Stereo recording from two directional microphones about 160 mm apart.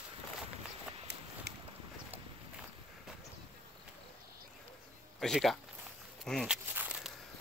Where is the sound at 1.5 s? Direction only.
90° right.